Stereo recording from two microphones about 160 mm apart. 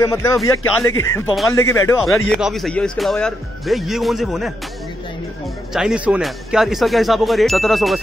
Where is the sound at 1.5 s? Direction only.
15° left (ahead or behind).